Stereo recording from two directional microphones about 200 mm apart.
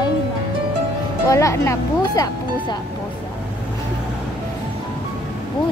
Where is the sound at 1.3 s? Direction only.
15° left (ahead or behind).